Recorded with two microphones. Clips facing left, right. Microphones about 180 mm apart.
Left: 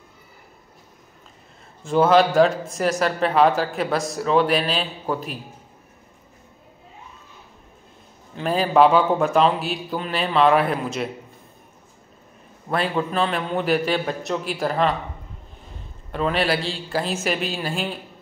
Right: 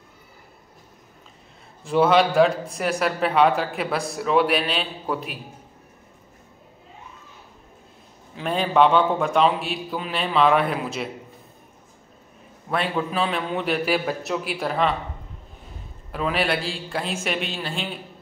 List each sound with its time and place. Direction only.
1.9 s speech: centre (ahead or behind)
8.4 s speech: centre (ahead or behind)
12.7 s speech: centre (ahead or behind)
16.1 s speech: 5° right (ahead or behind)